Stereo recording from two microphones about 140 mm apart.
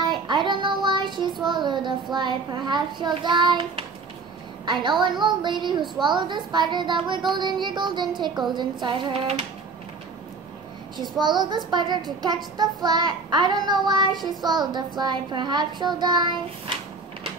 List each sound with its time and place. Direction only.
0.0 s child singing: 35° right (ahead or behind)
5.0 s child singing: 35° right (ahead or behind)
11.1 s child singing: 30° right (ahead or behind)